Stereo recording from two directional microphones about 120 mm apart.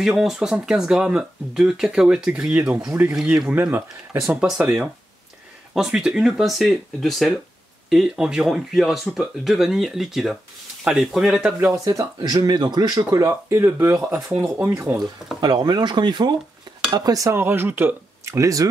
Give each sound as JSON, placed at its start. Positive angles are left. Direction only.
{"t": 0.0, "sound": "speech", "side_deg": -5}
{"t": 11.8, "sound": "speech", "side_deg": -30}
{"t": 15.4, "sound": "speech", "side_deg": -35}